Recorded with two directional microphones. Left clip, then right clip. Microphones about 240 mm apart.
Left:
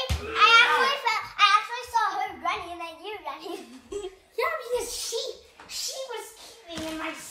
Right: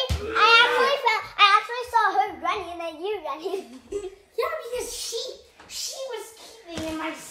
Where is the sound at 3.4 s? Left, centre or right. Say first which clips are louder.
Right 7 dB; centre.